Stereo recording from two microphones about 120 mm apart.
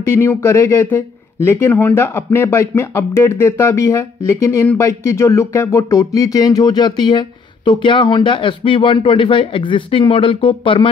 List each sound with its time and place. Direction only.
0.0 s speech: 20° left (ahead or behind); by 10.9 s 45° left (ahead or behind)